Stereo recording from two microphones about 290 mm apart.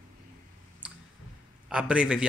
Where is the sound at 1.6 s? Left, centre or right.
Centre.